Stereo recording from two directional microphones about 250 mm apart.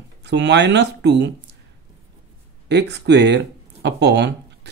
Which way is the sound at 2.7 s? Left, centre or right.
Right.